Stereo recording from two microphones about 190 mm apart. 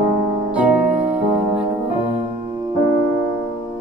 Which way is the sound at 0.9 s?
35° right (ahead or behind).